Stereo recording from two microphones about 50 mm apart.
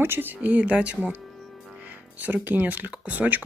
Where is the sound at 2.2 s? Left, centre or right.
Right.